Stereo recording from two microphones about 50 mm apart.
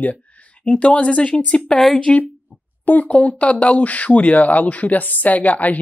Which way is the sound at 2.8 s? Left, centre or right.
Left.